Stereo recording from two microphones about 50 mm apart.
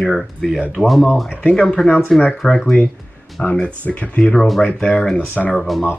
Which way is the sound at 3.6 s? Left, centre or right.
Left.